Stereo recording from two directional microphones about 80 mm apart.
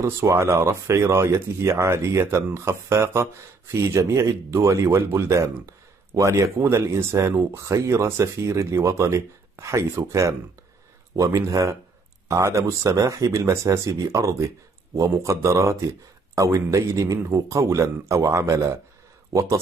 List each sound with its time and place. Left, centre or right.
0.0 s speech: right